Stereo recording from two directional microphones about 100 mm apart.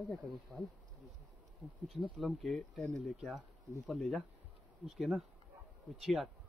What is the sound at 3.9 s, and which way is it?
Speech, centre (ahead or behind).